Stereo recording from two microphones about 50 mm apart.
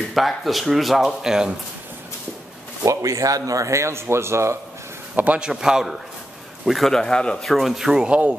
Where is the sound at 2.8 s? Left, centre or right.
Right.